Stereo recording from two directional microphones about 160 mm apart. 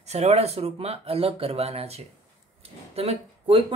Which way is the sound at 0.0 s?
40° right (ahead or behind).